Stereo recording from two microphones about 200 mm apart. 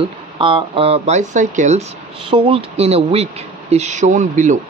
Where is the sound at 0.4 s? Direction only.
25° right (ahead or behind).